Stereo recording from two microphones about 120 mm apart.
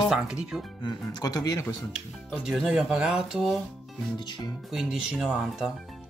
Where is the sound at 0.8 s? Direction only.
35° left (ahead or behind).